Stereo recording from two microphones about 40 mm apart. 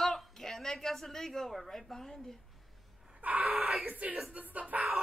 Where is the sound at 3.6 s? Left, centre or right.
Centre.